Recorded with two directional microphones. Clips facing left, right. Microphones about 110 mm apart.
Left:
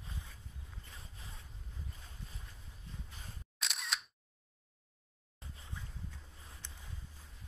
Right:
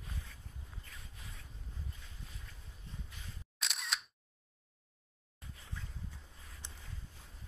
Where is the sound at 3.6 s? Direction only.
Centre (ahead or behind).